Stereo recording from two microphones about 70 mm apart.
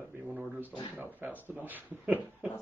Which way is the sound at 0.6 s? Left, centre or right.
Right.